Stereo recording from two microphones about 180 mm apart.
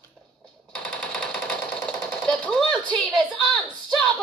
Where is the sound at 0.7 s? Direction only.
5° left (ahead or behind).